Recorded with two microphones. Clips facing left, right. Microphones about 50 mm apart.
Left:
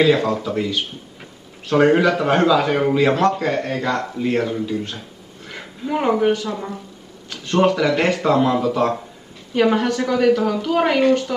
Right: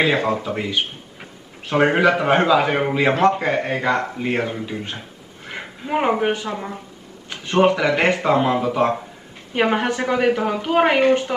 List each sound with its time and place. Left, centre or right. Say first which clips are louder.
0.0 s speech: left 2 dB; right